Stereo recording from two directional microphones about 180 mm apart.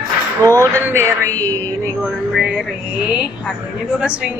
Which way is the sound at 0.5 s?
15° right (ahead or behind).